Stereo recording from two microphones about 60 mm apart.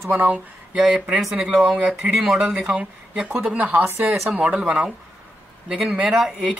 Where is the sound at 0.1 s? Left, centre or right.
Right.